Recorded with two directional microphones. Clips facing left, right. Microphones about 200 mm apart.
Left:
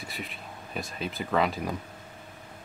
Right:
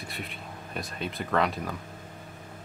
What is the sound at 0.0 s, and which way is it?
Speech, centre (ahead or behind).